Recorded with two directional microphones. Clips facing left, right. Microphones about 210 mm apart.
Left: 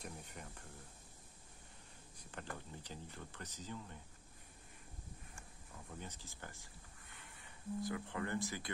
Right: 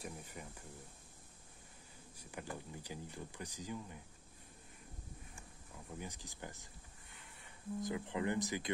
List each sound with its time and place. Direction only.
0.0 s speech: 5° right (ahead or behind)
2.1 s speech: 10° right (ahead or behind)
5.9 s speech: 10° right (ahead or behind)
7.9 s speech: 20° right (ahead or behind)